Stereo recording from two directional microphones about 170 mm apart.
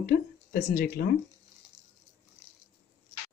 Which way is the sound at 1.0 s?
65° left (ahead or behind).